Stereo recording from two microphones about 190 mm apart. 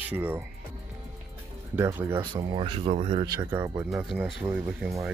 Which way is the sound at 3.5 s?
15° right (ahead or behind).